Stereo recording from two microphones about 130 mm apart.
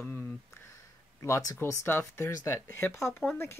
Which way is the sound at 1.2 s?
25° left (ahead or behind).